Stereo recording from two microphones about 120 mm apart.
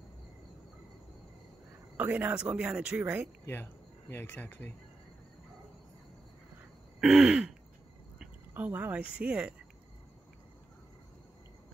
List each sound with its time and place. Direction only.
2.0 s speech: 15° right (ahead or behind)
3.4 s speech: 20° left (ahead or behind)
7.0 s throat clearing: 5° right (ahead or behind)
8.2 s speech: 15° right (ahead or behind)